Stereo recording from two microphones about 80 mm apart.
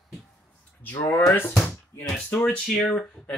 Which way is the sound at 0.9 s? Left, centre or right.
Left.